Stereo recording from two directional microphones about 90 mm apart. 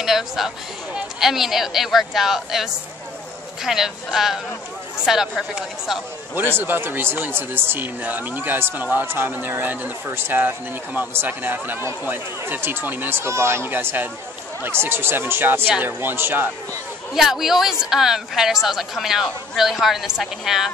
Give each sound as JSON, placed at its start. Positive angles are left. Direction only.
{"t": 0.0, "sound": "speech", "side_deg": -5}
{"t": 6.5, "sound": "speech", "side_deg": -25}
{"t": 17.1, "sound": "speech", "side_deg": -5}